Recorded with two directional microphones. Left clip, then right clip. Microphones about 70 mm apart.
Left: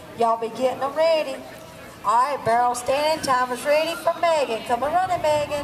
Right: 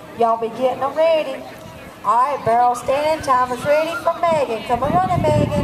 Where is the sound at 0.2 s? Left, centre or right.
Left.